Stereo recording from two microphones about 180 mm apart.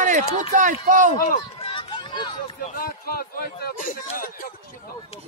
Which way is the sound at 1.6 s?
30° left (ahead or behind).